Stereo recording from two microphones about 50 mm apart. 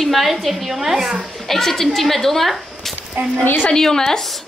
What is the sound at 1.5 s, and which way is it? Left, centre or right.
A woman's voice, centre.